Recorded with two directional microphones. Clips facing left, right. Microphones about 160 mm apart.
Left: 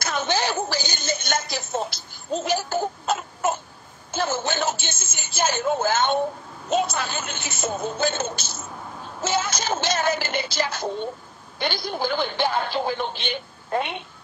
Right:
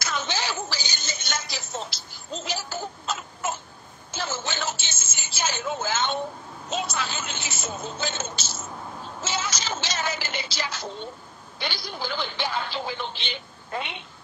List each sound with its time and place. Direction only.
0.0 s a sound: 55° left (ahead or behind)
4.1 s music: 55° left (ahead or behind)
6.7 s a woman's voice: 55° left (ahead or behind)